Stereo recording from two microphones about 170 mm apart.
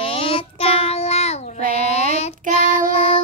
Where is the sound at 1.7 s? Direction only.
40° left (ahead or behind).